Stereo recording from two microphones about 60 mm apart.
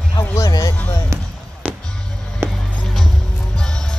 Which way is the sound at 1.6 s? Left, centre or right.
Right.